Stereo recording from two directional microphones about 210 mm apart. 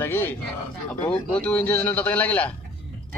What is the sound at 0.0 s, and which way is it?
Speech, 10° left (ahead or behind).